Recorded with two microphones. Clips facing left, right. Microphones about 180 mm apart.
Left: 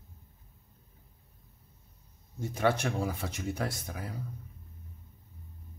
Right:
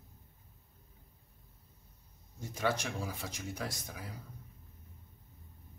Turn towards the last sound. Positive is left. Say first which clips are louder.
# left 6 dB
turn(degrees=60)  # may be behind; listen again after turning